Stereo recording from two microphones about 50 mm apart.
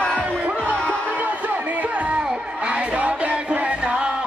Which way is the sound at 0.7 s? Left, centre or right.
Left.